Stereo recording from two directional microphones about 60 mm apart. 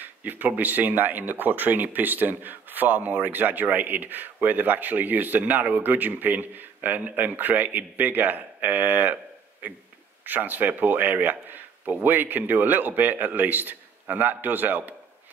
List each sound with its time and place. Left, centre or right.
0.0 s speech: right